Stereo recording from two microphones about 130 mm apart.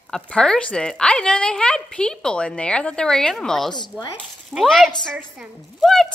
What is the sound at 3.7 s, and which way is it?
Speech, 30° left (ahead or behind).